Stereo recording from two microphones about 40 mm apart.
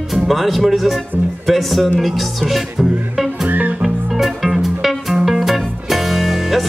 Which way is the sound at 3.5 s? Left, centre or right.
Right.